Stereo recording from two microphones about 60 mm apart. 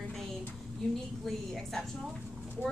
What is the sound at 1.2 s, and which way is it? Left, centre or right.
Speech, centre.